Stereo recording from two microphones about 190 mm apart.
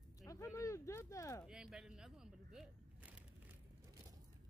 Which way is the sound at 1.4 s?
5° right (ahead or behind).